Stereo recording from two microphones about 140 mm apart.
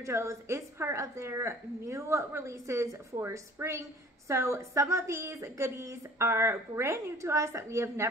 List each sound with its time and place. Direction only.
0.0 s a woman's voice: 20° right (ahead or behind)